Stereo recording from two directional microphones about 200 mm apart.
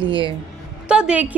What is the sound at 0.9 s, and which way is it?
Speech, 5° right (ahead or behind).